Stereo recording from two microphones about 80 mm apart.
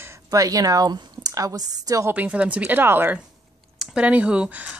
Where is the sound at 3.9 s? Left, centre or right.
Centre.